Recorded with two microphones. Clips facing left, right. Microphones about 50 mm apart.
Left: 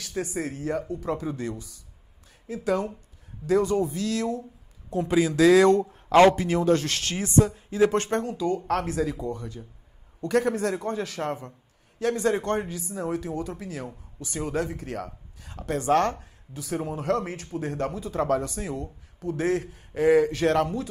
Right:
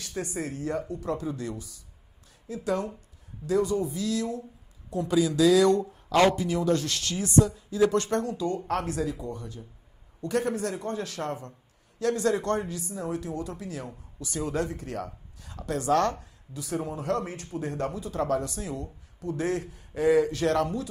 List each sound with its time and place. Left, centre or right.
0.2 s speech: left
1.0 s speech: left
5.0 s speech: left
9.0 s speech: left
16.6 s a man's voice: left